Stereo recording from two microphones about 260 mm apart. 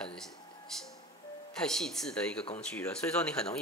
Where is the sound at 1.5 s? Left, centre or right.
Centre.